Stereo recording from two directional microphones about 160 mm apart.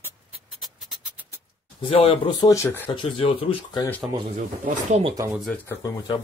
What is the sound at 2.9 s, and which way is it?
Speech, 30° left (ahead or behind).